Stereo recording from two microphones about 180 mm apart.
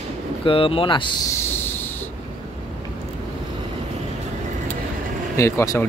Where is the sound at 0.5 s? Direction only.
30° left (ahead or behind).